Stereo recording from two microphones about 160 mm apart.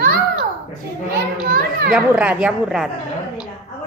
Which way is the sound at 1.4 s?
65° right (ahead or behind).